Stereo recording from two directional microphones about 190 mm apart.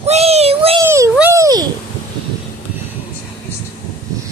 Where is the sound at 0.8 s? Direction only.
15° right (ahead or behind).